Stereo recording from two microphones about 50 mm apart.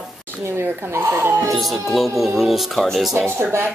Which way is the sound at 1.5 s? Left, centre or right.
Centre.